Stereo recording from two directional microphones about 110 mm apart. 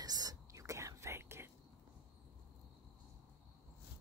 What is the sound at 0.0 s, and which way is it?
Whispering, 35° right (ahead or behind).